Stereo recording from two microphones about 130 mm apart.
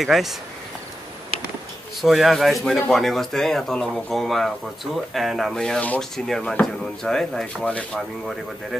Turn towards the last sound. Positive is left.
turn(degrees=5)  # may be behind; listen again after turning